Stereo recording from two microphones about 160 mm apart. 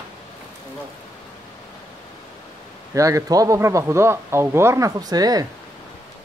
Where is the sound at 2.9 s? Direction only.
20° right (ahead or behind).